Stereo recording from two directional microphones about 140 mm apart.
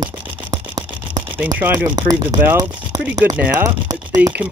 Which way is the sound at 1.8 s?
30° right (ahead or behind).